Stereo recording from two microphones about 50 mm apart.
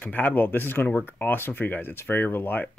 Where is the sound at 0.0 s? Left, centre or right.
Left.